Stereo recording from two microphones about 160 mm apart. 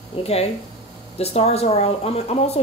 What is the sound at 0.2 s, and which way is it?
Speech, 40° left (ahead or behind).